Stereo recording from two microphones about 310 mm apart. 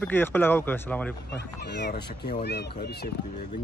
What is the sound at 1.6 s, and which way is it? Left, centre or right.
Speech, left.